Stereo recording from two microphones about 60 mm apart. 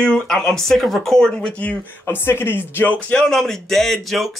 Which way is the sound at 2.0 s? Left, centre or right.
Left.